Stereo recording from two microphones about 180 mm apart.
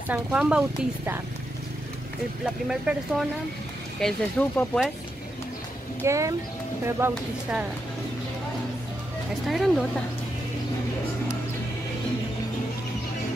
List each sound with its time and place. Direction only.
0.1 s speech: 5° right (ahead or behind)
2.4 s speech: centre (ahead or behind)
6.0 s speech: 15° right (ahead or behind)
9.5 s speech: centre (ahead or behind)